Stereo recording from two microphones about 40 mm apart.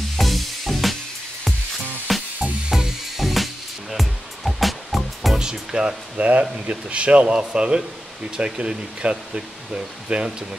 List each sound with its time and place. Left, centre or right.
0.2 s music: centre
2.1 s music: centre
5.4 s music: centre
6.1 s speech: right